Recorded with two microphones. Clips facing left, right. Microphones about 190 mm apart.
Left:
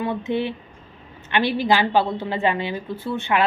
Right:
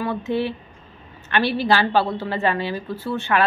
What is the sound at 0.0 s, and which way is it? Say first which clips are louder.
Speech: even; 20° left (ahead or behind).